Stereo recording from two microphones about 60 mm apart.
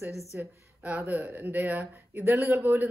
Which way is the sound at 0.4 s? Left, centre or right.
Right.